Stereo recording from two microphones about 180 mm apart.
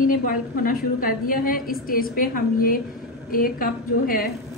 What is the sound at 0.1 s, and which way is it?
A woman's voice, 50° left (ahead or behind).